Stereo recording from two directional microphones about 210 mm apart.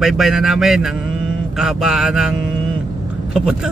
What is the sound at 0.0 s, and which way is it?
Speech, centre (ahead or behind).